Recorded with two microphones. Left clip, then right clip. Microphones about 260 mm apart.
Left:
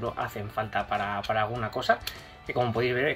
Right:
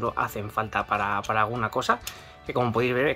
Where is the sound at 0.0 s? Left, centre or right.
Right.